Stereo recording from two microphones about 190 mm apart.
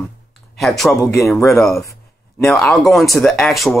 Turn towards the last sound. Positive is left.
turn(degrees=0)  # may be behind; listen again after turning